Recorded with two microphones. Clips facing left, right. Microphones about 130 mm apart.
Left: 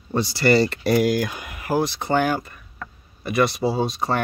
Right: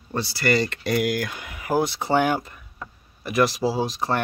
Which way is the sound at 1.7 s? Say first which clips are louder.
Even; 5° right (ahead or behind).